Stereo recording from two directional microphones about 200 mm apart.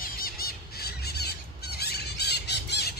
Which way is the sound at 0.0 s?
50° left (ahead or behind).